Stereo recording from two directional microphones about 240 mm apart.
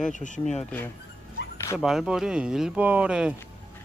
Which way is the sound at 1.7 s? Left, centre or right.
Centre.